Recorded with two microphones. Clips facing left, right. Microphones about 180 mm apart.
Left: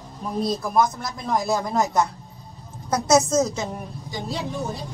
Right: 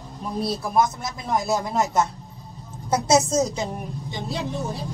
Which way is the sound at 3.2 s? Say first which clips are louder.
Left 1 dB; 30° right (ahead or behind).